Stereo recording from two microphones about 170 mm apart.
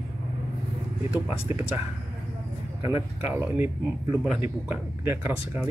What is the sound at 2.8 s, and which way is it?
Speech, 20° right (ahead or behind).